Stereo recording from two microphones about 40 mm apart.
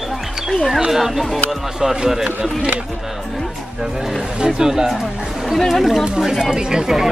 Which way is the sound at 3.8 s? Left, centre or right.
Centre.